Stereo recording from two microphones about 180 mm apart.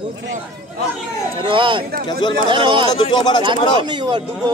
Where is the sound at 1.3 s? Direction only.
30° right (ahead or behind).